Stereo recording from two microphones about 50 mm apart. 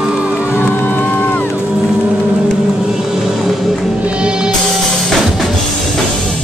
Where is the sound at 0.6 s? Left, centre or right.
Left.